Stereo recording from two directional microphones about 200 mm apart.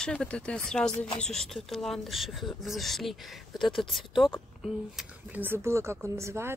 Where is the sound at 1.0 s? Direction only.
30° left (ahead or behind).